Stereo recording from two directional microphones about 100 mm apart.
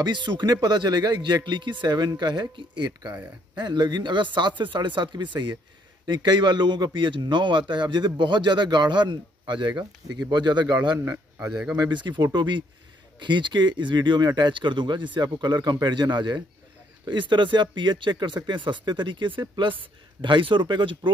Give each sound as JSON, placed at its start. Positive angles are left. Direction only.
{"t": 0.0, "sound": "a man's voice", "side_deg": -50}
{"t": 11.0, "sound": "a man's voice", "side_deg": -15}
{"t": 11.7, "sound": "a man's voice", "side_deg": -45}